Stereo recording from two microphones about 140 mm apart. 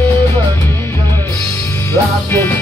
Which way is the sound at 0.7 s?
15° left (ahead or behind).